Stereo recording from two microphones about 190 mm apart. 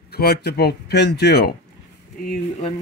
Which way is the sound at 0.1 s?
55° left (ahead or behind).